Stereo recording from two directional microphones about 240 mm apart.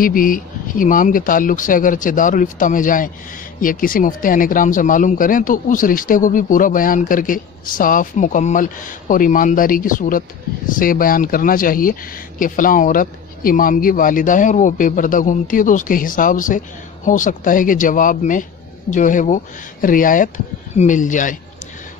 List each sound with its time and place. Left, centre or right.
0.0 s speech: left